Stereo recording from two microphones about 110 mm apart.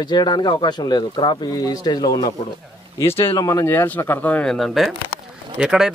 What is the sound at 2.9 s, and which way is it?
A man's voice, 25° left (ahead or behind).